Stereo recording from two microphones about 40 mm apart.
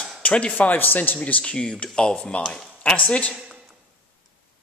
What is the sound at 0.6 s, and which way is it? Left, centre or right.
Speech, left.